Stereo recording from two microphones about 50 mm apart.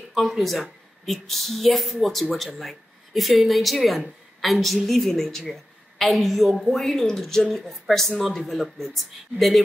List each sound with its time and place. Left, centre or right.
0.1 s a woman's voice: centre